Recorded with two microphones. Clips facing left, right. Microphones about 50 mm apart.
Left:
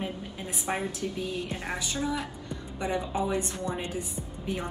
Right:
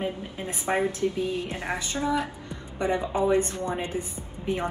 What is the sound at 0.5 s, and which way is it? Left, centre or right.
A woman's voice, right.